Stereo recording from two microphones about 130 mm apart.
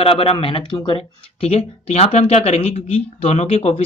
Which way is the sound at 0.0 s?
45° left (ahead or behind).